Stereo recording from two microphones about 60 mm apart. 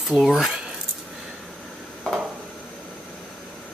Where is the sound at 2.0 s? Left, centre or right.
Centre.